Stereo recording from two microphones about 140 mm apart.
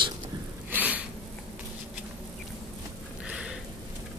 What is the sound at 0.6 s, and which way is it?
Snort, 10° right (ahead or behind).